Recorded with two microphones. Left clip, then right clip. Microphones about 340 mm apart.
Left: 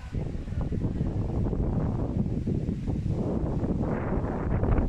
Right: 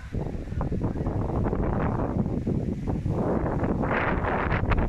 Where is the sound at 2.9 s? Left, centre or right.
Right.